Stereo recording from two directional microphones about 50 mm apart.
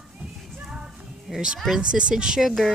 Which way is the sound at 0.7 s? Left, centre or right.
Centre.